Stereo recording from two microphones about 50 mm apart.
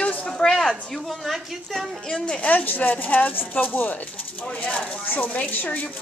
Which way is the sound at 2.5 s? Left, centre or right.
Left.